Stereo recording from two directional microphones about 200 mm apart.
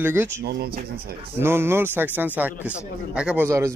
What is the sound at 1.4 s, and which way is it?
Speech, 10° right (ahead or behind).